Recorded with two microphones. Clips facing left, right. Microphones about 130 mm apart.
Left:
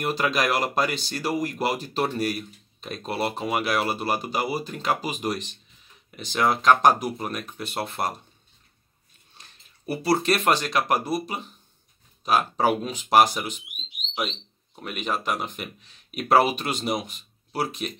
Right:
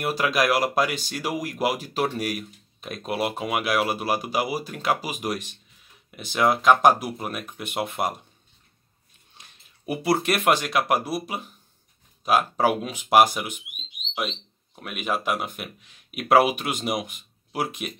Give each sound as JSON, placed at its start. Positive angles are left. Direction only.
{"t": 0.0, "sound": "speech", "side_deg": -10}
{"t": 9.4, "sound": "speech", "side_deg": -15}
{"t": 14.8, "sound": "speech", "side_deg": -5}